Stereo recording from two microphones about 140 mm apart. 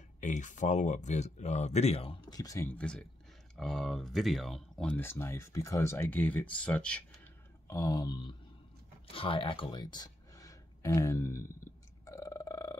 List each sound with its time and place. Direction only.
0.2 s speech: 60° left (ahead or behind); by 2.1 s 45° left (ahead or behind)
2.3 s a sound: 25° left (ahead or behind)
2.7 s speech: 5° left (ahead or behind)
4.9 s speech: 15° left (ahead or behind)
7.6 s a sound: 25° left (ahead or behind)
9.1 s speech: 40° left (ahead or behind); by 11.4 s 20° left (ahead or behind)
12.0 s burping: 25° left (ahead or behind)